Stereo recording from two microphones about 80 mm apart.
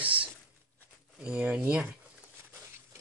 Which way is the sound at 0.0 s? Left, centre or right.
Centre.